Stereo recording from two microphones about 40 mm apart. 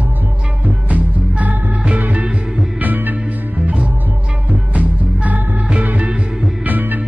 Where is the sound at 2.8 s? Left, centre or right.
Right.